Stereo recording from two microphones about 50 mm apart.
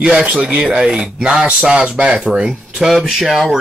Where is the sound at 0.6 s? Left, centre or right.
Centre.